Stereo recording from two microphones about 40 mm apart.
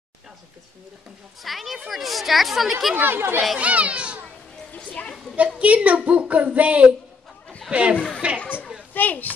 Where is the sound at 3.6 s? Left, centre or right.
Right.